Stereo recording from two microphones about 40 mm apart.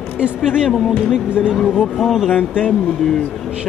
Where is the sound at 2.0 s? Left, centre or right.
Centre.